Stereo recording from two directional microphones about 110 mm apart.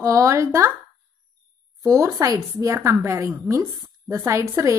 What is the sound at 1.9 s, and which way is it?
A woman's voice, 30° right (ahead or behind).